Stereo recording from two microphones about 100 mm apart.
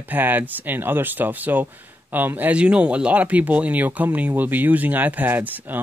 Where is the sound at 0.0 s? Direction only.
20° right (ahead or behind).